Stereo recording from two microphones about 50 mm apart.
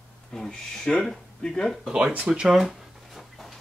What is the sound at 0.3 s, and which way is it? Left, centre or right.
Speech, centre.